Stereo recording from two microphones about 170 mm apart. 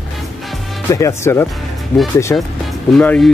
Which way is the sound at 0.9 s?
15° left (ahead or behind).